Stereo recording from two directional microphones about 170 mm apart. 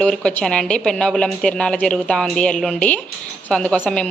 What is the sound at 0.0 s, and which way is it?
A child's voice, 5° left (ahead or behind).